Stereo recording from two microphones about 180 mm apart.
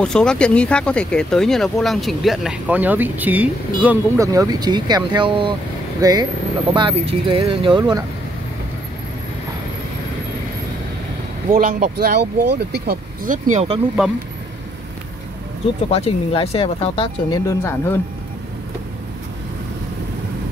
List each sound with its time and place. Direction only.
0.0 s speech: 5° left (ahead or behind); by 8.0 s 25° right (ahead or behind)
11.5 s speech: 55° right (ahead or behind)
15.9 s speech: 30° left (ahead or behind)
17.5 s speech: 10° left (ahead or behind)